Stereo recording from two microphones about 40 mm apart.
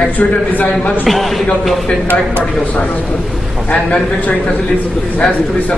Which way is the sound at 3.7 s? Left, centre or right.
Left.